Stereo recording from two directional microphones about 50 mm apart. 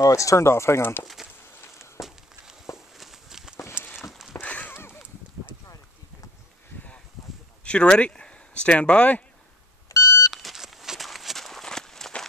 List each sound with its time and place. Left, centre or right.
0.0 s speech: left
1.0 s a sound: centre
3.0 s walk: centre
4.4 s horse: left
4.6 s a sound: left
7.6 s speech: left
9.8 s beep: left
10.3 s walk: centre